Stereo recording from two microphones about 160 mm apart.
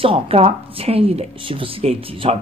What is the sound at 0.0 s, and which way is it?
Speech, 35° right (ahead or behind).